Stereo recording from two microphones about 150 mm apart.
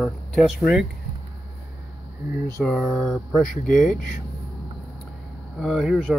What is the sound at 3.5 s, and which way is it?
Speech, 60° left (ahead or behind).